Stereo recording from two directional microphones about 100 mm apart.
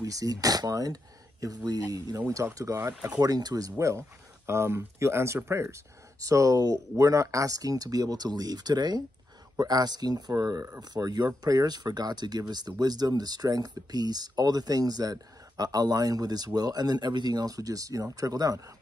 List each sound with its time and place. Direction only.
0.0 s speech: 35° right (ahead or behind)